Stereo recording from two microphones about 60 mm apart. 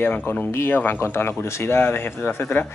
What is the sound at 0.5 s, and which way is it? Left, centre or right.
Speech, left.